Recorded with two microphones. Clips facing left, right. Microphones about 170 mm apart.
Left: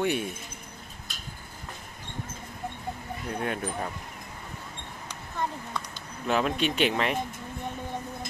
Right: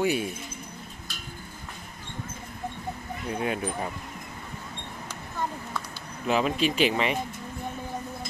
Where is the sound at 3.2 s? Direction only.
5° right (ahead or behind).